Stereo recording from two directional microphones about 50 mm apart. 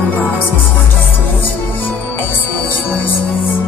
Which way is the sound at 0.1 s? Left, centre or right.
Left.